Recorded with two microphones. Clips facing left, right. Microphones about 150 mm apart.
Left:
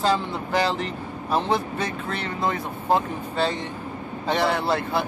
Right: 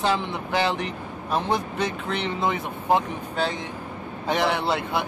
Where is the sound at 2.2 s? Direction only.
20° right (ahead or behind).